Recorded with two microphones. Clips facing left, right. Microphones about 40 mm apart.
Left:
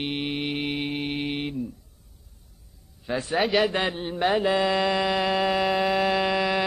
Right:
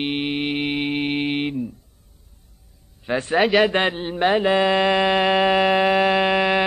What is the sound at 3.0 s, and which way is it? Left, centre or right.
Speech, right.